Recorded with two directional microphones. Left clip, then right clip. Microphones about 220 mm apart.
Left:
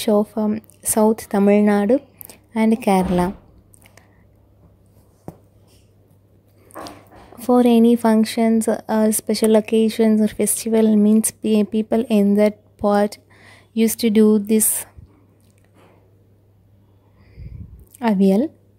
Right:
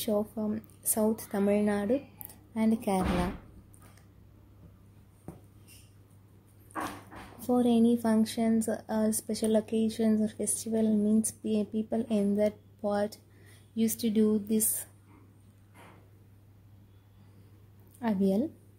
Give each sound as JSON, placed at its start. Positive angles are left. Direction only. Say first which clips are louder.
{"t": 0.0, "sound": "speech", "louder": "left 13 dB", "side_deg": 40}
{"t": 7.4, "sound": "speech", "louder": "left 12 dB", "side_deg": 40}
{"t": 17.9, "sound": "speech", "louder": "left 12 dB", "side_deg": 40}